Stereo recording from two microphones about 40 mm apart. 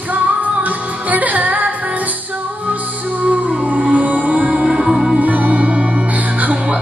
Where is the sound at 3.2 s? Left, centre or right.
Right.